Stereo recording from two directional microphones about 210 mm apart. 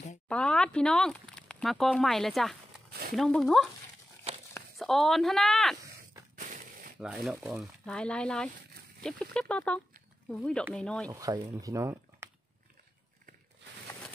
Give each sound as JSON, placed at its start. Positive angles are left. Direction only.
{"t": 0.3, "sound": "speech", "side_deg": 5}
{"t": 2.9, "sound": "a sound", "side_deg": -45}
{"t": 3.2, "sound": "speech", "side_deg": 0}
{"t": 4.3, "sound": "walk", "side_deg": -30}
{"t": 4.7, "sound": "speech", "side_deg": 0}
{"t": 6.3, "sound": "a sound", "side_deg": -40}
{"t": 7.0, "sound": "speech", "side_deg": -5}
{"t": 11.1, "sound": "speech", "side_deg": -15}